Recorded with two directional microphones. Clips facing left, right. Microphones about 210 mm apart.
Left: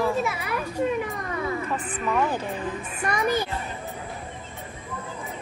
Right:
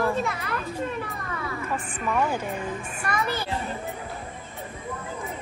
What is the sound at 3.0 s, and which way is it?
Speech, 15° left (ahead or behind).